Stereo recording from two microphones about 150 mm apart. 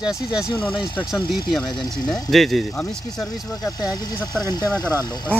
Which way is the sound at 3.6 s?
25° left (ahead or behind).